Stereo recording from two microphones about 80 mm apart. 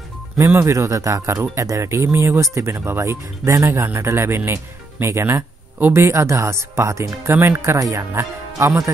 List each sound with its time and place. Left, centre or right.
0.4 s speech: right
5.9 s speech: right